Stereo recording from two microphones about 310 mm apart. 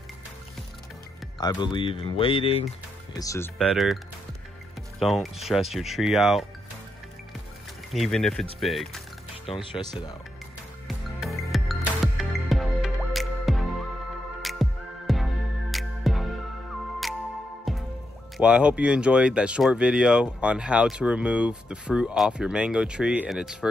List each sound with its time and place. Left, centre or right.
1.4 s speech: centre
7.9 s speech: centre
9.5 s speech: centre
10.9 s music: centre
18.4 s speech: centre